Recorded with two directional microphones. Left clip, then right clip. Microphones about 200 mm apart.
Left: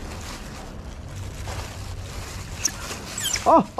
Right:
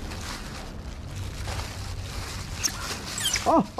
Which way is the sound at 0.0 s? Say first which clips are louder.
Even; centre (ahead or behind).